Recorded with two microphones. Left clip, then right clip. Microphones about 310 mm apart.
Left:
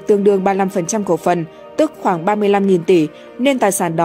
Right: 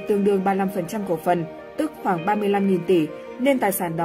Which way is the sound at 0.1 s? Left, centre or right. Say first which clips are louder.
Left 7 dB; left.